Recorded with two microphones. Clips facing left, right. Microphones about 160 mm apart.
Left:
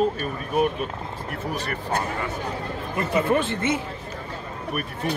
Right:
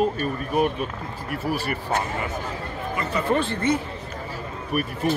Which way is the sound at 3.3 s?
20° left (ahead or behind).